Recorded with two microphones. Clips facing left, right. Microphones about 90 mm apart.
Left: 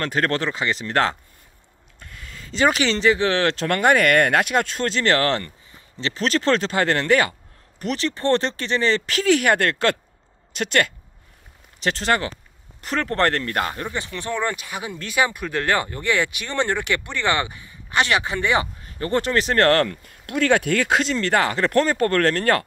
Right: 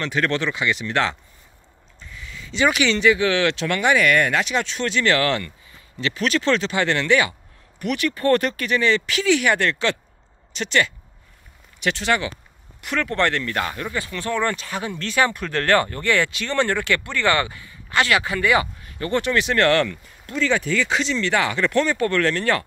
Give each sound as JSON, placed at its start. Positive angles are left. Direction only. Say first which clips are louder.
{"t": 0.0, "sound": "speech", "louder": "even", "side_deg": 40}
{"t": 2.0, "sound": "speech", "louder": "right 2 dB", "side_deg": 55}
{"t": 7.8, "sound": "speech", "louder": "right 2 dB", "side_deg": 30}
{"t": 20.2, "sound": "speech", "louder": "left 3 dB", "side_deg": 60}